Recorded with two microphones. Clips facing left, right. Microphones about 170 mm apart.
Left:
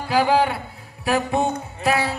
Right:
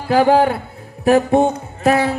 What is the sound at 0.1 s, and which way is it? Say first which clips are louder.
Speech: right 6 dB; 50° right (ahead or behind).